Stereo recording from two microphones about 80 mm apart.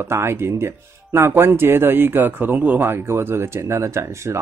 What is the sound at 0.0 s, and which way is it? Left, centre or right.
Speech, right.